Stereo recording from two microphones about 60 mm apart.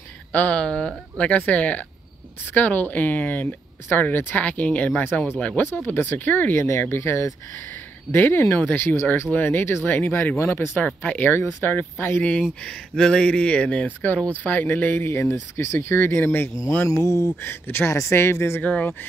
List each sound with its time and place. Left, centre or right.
0.3 s speech: left
0.6 s speech: centre; by 6.5 s left
6.5 s speech: left
8.1 s speech: left
11.0 s speech: left
12.6 s speech: centre; by 15.0 s left
15.0 s speech: left
16.8 s a sound: left
17.4 s speech: left
18.6 s speech: left